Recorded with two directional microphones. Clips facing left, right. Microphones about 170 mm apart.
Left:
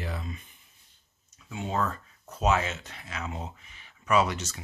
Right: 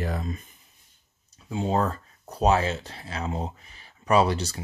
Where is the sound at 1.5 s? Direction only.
35° right (ahead or behind).